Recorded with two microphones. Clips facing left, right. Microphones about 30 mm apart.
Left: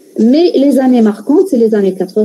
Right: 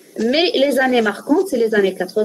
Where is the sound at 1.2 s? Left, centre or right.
Centre.